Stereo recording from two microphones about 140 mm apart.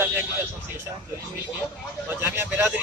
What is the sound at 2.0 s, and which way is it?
Speech, 15° right (ahead or behind).